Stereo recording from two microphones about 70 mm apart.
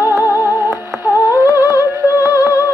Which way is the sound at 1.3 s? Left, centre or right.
Right.